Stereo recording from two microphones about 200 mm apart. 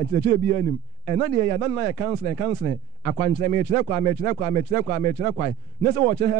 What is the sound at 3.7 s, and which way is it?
A man's voice, 15° right (ahead or behind).